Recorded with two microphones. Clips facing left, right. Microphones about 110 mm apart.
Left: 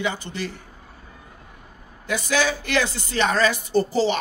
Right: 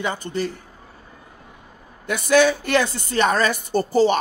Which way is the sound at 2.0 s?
55° right (ahead or behind).